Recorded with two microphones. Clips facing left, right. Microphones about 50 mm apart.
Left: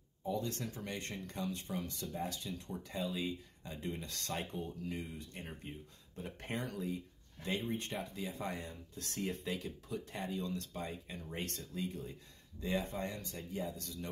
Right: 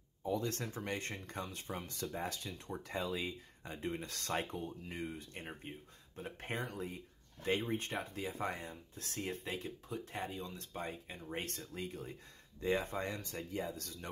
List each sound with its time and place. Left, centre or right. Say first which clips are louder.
0.2 s speech: right 1 dB; right
4.6 s speech: left 1 dB; right
10.8 s speech: even; right